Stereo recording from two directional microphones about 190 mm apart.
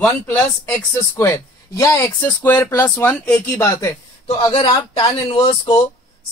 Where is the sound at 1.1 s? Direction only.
15° left (ahead or behind).